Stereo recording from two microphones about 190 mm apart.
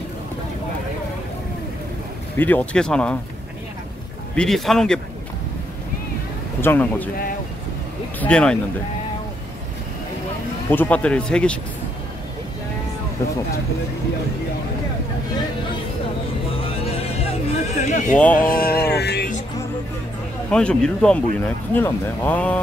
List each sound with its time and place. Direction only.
2.3 s speech: 10° left (ahead or behind)
4.4 s speech: centre (ahead or behind)
6.6 s speech: 10° left (ahead or behind)
8.2 s speech: 5° left (ahead or behind)
10.7 s speech: 10° left (ahead or behind)
17.7 s speech: 40° left (ahead or behind)
18.3 s music: 50° left (ahead or behind)
20.4 s speech: 5° left (ahead or behind)